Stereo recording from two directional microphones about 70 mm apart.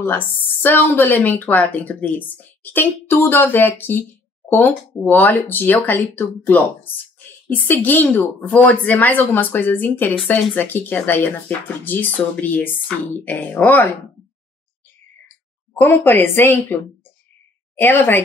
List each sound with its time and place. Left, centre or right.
0.0 s speech: left
15.8 s a woman's voice: left